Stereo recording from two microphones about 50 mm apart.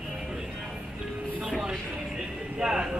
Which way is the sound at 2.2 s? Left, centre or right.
Centre.